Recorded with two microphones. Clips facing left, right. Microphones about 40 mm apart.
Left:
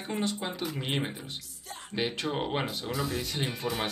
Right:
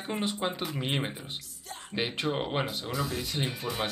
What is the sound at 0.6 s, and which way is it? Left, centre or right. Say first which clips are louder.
Speech: even; centre.